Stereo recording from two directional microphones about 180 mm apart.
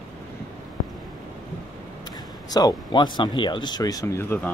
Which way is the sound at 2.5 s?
25° left (ahead or behind).